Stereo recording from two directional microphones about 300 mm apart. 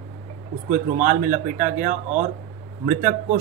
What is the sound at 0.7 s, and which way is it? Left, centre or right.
Speech, right.